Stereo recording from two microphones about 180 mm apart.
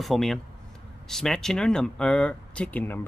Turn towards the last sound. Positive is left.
turn(degrees=10)  # may be behind; listen again after turning